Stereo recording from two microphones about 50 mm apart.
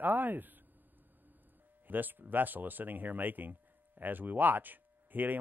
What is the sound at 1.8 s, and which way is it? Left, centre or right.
Speech, right.